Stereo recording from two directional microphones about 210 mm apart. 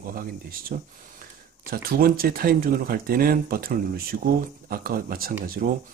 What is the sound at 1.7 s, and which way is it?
Speech, 45° right (ahead or behind).